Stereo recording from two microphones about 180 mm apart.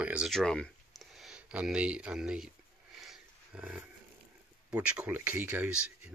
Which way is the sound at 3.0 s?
5° right (ahead or behind).